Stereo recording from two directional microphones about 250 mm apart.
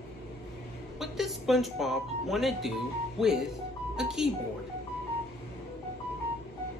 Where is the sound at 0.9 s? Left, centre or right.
Centre.